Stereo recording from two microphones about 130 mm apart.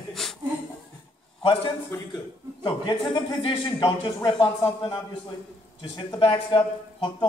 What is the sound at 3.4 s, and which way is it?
Speech, 40° left (ahead or behind).